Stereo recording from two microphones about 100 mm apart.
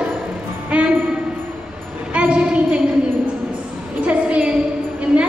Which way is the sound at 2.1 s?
10° right (ahead or behind).